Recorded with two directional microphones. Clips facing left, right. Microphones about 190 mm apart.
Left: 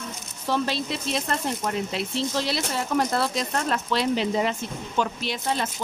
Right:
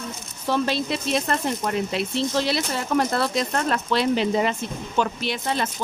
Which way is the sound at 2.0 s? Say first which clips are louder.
Right 3 dB; 60° right (ahead or behind).